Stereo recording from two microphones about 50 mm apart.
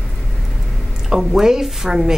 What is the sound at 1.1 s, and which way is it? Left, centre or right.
A woman's voice, centre.